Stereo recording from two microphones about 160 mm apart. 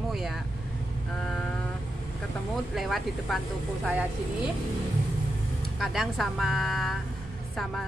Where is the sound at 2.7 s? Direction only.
Centre (ahead or behind).